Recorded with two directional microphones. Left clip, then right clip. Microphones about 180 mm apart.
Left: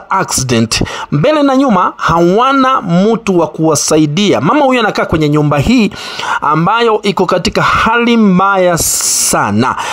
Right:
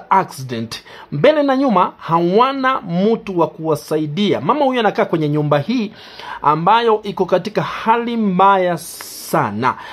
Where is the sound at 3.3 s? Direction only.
40° left (ahead or behind).